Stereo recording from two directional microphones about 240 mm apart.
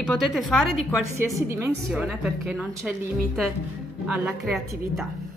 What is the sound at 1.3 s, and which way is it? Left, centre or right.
A woman's voice, centre.